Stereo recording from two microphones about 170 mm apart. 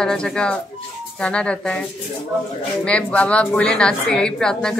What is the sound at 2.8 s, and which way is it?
Speech, 5° left (ahead or behind).